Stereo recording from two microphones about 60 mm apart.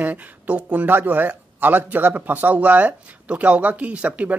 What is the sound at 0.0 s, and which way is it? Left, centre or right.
Speech, right.